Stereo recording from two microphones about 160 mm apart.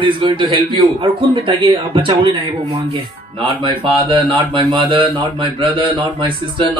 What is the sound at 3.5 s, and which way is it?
A man's voice, 30° right (ahead or behind).